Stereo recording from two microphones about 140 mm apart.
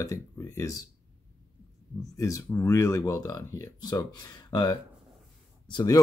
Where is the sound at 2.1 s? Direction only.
25° left (ahead or behind).